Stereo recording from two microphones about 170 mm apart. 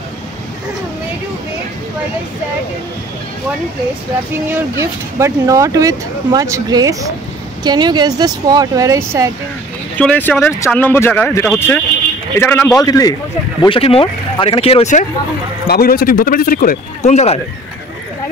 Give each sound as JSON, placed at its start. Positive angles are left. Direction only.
{"t": 4.5, "sound": "speech", "side_deg": -15}
{"t": 9.9, "sound": "speech", "side_deg": 10}
{"t": 13.6, "sound": "speech", "side_deg": 35}
{"t": 15.6, "sound": "speech", "side_deg": 65}